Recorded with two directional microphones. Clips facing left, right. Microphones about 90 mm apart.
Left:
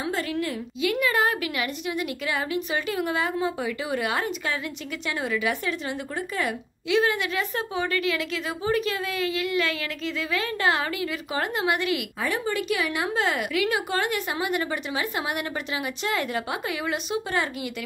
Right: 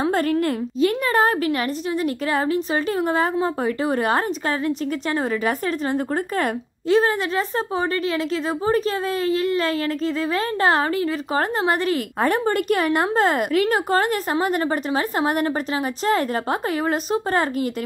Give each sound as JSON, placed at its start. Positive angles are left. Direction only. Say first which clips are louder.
{"t": 0.0, "sound": "a woman's voice", "louder": "right 8 dB", "side_deg": -45}